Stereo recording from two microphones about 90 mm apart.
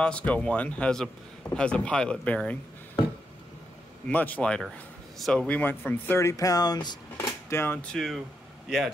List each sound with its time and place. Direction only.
0.0 s a man's voice: 15° left (ahead or behind)
4.1 s a man's voice: 20° left (ahead or behind); by 5.5 s centre (ahead or behind)
5.5 s speech: 15° left (ahead or behind); by 7.0 s 50° left (ahead or behind)
7.2 s a sound: 30° left (ahead or behind)
7.9 s a man's voice: centre (ahead or behind)